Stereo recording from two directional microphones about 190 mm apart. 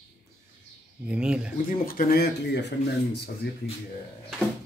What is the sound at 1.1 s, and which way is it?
Speech, 5° right (ahead or behind).